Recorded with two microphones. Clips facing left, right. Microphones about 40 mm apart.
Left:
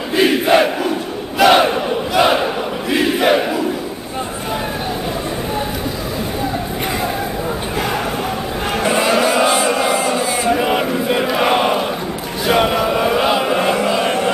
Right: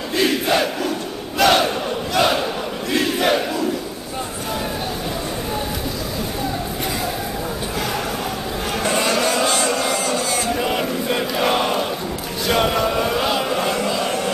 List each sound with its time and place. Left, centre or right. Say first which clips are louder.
0.1 s crowd: left 6 dB; left
1.4 s battle cry: left 5 dB; centre
8.8 s a sound: left 4 dB; centre
12.4 s chant: left 3 dB; centre